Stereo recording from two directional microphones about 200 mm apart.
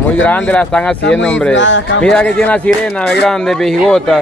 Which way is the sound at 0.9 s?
60° left (ahead or behind).